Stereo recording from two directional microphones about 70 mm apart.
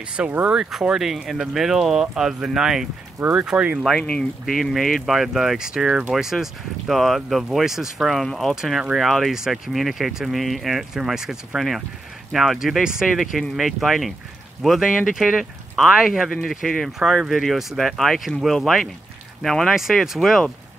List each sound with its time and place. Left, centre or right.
0.1 s speech: right
0.5 s speech: centre
3.2 s speech: right
4.0 s speech: centre
4.5 s speech: centre